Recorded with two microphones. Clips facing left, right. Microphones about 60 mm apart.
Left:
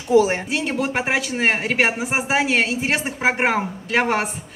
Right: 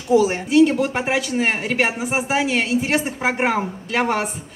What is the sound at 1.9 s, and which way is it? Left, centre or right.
Speech, left.